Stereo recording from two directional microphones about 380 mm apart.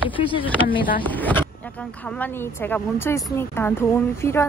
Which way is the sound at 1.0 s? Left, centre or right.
Centre.